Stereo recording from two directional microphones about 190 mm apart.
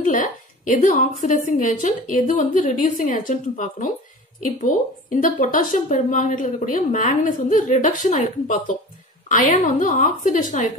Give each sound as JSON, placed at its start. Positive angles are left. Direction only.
{"t": 0.0, "sound": "a woman's voice", "side_deg": 45}